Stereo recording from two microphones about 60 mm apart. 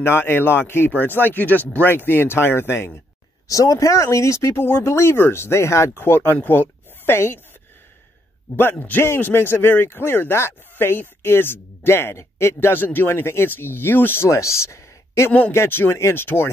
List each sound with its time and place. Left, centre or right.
0.0 s speech: left
3.4 s speech: left
5.9 s speech: left
8.7 s a man's voice: left
9.0 s speech: left
12.5 s speech: left
14.3 s speech: left